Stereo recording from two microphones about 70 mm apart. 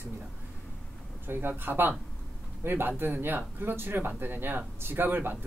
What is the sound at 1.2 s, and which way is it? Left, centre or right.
A man's voice, right.